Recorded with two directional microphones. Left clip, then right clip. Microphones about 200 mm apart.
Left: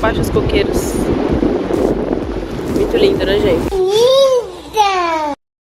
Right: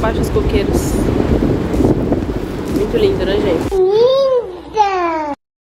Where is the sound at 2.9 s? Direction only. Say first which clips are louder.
Left 2 dB; centre (ahead or behind).